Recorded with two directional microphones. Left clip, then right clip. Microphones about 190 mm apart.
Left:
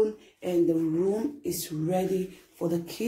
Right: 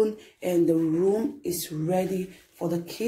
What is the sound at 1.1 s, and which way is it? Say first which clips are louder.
Speech: right 3 dB; 5° right (ahead or behind).